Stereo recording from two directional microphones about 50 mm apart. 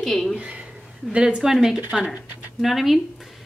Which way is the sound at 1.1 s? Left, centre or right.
Centre.